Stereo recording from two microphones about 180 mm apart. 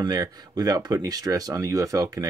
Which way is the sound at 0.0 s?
20° right (ahead or behind).